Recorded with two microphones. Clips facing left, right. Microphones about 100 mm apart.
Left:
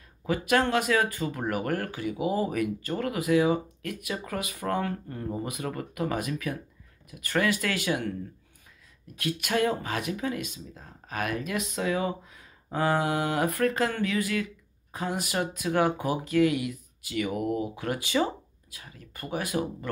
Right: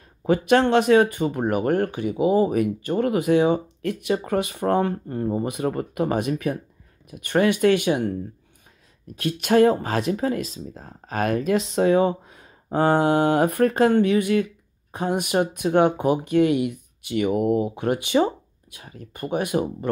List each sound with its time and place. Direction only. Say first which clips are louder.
0.2 s speech: right 7 dB; 30° right (ahead or behind)
18.8 s speech: right 7 dB; 35° right (ahead or behind)
19.1 s speech: right 6 dB; 25° right (ahead or behind)